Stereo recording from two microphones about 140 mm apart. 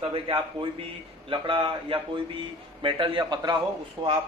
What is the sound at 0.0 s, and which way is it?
Speech, 40° right (ahead or behind).